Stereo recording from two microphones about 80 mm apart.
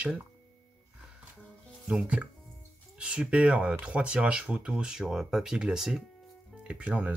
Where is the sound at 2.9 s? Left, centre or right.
Centre.